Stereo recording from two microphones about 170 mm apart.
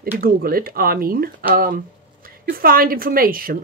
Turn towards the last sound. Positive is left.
turn(degrees=-55)  # may be behind; listen again after turning